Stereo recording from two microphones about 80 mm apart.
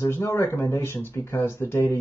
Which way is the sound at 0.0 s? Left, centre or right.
Left.